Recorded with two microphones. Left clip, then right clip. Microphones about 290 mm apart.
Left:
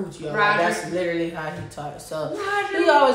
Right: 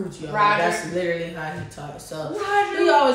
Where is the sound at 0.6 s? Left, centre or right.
Centre.